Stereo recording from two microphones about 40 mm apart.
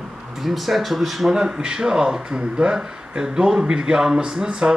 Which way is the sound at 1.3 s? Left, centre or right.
Centre.